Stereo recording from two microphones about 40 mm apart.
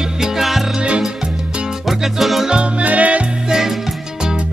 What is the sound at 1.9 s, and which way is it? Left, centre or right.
Music, centre.